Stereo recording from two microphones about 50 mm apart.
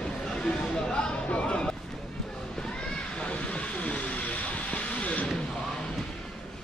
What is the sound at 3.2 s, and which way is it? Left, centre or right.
Vehicle, left.